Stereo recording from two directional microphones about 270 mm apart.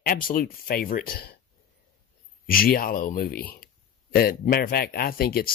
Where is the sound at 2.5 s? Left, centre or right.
Left.